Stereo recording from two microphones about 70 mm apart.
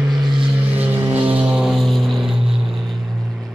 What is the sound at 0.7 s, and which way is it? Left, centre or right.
Vehicle, right.